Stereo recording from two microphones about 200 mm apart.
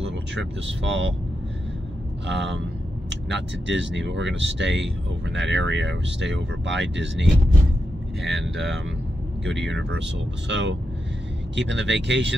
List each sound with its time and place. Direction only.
0.3 s speech: 65° right (ahead or behind)
2.2 s speech: 60° right (ahead or behind)
8.5 s speech: centre (ahead or behind)
9.7 s speech: 65° right (ahead or behind)